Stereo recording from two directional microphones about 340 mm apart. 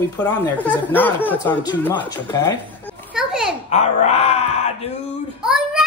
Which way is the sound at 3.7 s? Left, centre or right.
Centre.